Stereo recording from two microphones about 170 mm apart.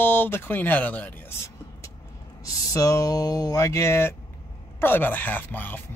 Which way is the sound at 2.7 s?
20° left (ahead or behind).